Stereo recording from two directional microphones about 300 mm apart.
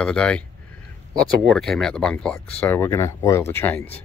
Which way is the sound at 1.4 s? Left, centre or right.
Centre.